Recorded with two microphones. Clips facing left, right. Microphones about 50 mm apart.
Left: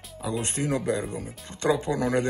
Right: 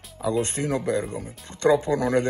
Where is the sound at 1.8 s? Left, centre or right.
Right.